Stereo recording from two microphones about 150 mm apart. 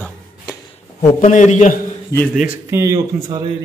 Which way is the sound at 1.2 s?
55° left (ahead or behind).